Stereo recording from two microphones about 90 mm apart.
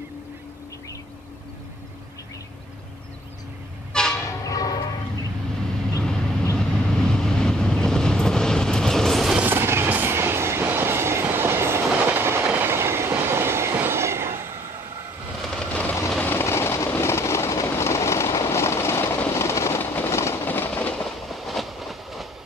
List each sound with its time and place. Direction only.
3.9 s train: 10° left (ahead or behind)
4.5 s church bell: 40° left (ahead or behind)
6.0 s vehicle: 10° left (ahead or behind)
9.4 s train: 25° right (ahead or behind)
15.5 s a sound: 15° left (ahead or behind)
16.3 s vehicle: 25° left (ahead or behind)
16.9 s train: 30° left (ahead or behind)
21.0 s train: centre (ahead or behind)